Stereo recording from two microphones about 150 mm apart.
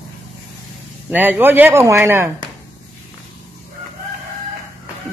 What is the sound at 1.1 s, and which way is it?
Speech, 10° right (ahead or behind).